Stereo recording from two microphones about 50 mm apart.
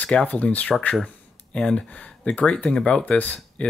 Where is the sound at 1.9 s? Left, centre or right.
Left.